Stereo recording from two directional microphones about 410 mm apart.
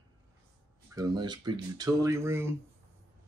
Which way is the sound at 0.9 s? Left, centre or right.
Centre.